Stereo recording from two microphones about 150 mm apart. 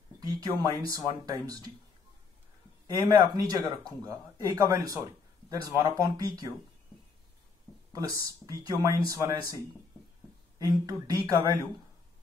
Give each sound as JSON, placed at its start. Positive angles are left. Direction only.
{"t": 0.2, "sound": "a man's voice", "side_deg": -25}
{"t": 2.9, "sound": "a man's voice", "side_deg": -25}
{"t": 8.0, "sound": "a man's voice", "side_deg": -25}
{"t": 10.6, "sound": "a man's voice", "side_deg": -25}